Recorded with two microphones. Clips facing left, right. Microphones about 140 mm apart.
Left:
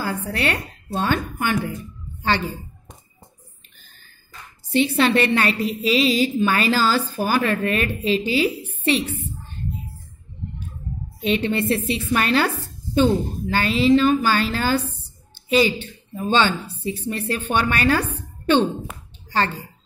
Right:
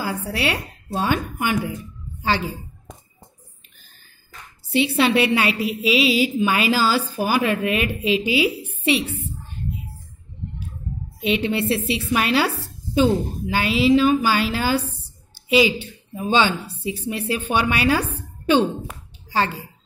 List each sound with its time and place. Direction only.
0.0 s a woman's voice: 10° right (ahead or behind)
4.7 s a woman's voice: 10° right (ahead or behind)
11.2 s a woman's voice: 5° right (ahead or behind)
19.3 s speech: 5° right (ahead or behind)